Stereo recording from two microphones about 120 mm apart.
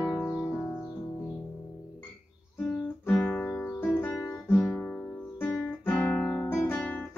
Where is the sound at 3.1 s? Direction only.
10° left (ahead or behind).